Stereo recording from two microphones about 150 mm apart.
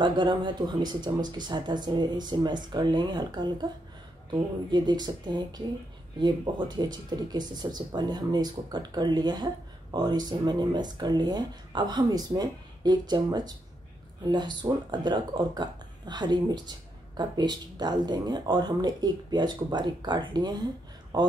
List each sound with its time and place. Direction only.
0.0 s speech: 30° right (ahead or behind)